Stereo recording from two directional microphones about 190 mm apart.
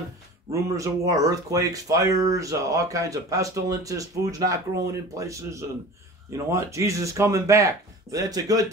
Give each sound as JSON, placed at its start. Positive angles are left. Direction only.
{"t": 0.5, "sound": "speech", "side_deg": -15}